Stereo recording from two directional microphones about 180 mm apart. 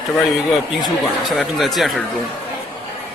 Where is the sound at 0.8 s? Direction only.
Centre (ahead or behind).